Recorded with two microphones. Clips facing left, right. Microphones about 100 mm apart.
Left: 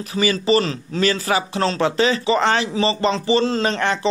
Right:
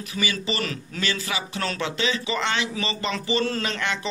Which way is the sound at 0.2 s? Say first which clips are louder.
Left 10 dB; 40° left (ahead or behind).